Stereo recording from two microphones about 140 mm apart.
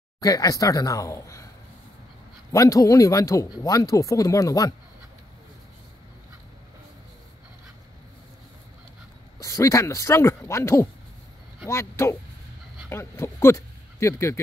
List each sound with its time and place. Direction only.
0.2 s speech: 25° left (ahead or behind)
2.5 s speech: 25° left (ahead or behind)
9.4 s speech: 25° left (ahead or behind)